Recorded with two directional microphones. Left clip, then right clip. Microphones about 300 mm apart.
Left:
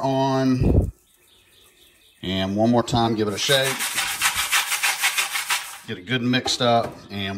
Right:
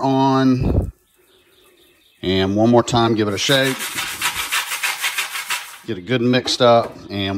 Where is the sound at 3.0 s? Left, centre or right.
Right.